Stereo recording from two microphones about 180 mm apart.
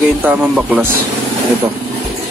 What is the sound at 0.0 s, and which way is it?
Speech, 5° right (ahead or behind).